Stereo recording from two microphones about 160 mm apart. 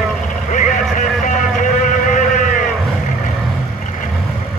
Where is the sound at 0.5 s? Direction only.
50° left (ahead or behind).